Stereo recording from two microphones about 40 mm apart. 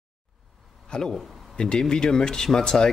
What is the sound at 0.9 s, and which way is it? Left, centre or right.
Speech, left.